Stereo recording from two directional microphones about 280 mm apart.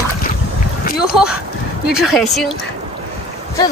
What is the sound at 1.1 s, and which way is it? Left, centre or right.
Speech, centre.